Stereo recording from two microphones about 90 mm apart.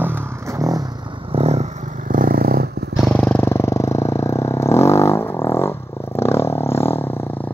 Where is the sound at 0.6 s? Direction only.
40° right (ahead or behind).